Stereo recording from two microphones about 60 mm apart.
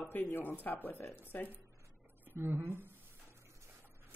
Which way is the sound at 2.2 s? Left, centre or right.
Right.